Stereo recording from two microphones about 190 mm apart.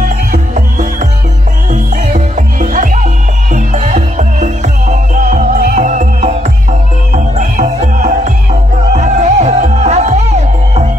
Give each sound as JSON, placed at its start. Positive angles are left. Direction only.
{"t": 0.0, "sound": "music", "side_deg": -45}